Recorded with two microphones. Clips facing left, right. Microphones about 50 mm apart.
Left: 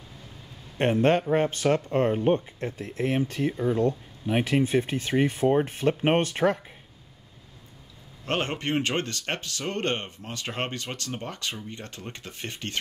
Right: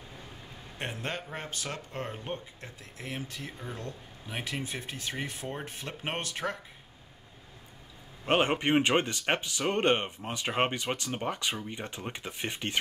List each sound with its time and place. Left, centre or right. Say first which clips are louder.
0.7 s speech: left 15 dB; left
8.3 s speech: right 2 dB; centre